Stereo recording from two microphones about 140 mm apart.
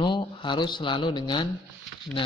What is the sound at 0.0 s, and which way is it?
A man's voice, 35° left (ahead or behind).